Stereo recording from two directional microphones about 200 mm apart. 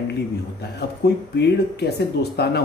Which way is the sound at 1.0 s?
55° left (ahead or behind).